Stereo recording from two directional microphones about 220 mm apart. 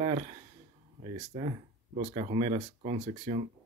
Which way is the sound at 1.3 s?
25° right (ahead or behind).